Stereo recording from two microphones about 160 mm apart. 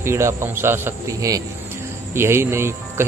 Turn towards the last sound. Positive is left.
turn(degrees=-15)  # may be behind; listen again after turning